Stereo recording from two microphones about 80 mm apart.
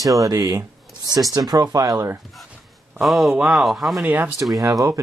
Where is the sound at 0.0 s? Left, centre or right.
Right.